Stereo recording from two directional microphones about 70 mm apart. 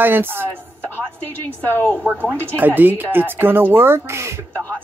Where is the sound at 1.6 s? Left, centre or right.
Left.